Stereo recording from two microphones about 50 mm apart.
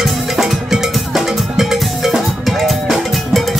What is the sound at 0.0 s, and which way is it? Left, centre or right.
Music, centre.